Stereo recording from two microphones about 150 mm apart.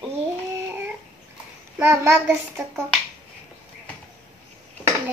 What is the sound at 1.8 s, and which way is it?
Child singing, 15° right (ahead or behind).